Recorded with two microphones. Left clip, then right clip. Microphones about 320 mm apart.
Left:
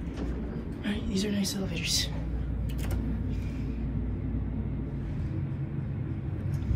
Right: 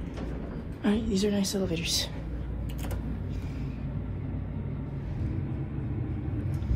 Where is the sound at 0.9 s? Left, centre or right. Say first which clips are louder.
Right 3 dB; centre.